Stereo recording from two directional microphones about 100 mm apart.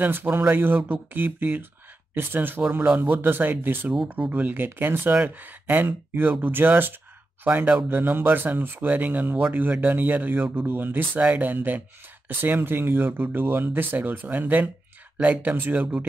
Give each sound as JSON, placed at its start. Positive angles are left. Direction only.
{"t": 0.0, "sound": "speech", "side_deg": -20}